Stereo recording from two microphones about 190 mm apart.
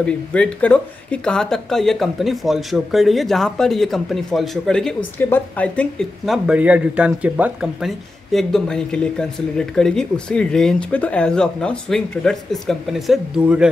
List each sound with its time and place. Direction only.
0.0 s speech: 5° left (ahead or behind)